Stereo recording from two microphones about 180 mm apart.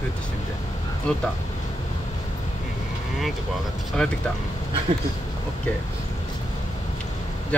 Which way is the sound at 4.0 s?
5° left (ahead or behind).